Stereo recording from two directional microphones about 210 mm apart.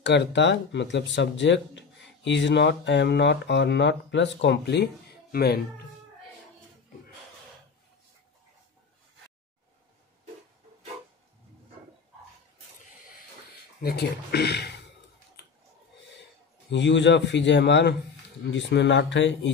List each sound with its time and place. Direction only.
0.0 s speech: 55° left (ahead or behind)
13.8 s speech: 50° left (ahead or behind)
16.7 s speech: 60° left (ahead or behind)